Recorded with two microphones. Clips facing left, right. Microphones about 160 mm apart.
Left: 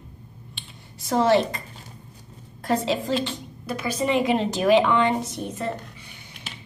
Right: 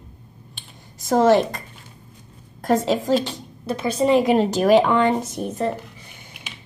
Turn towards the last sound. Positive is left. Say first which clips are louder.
# right 4 dB
turn(degrees=-45)  # may be behind; listen again after turning